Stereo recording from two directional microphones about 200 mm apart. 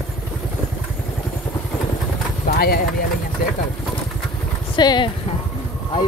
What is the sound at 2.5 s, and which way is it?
Speech, 50° left (ahead or behind).